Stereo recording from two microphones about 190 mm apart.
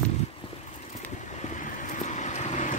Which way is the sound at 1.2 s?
40° left (ahead or behind).